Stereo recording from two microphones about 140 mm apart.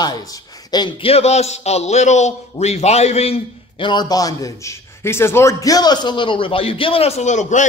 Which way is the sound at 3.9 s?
30° left (ahead or behind).